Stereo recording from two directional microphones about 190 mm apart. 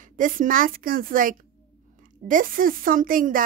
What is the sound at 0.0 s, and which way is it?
A woman's voice, 45° right (ahead or behind).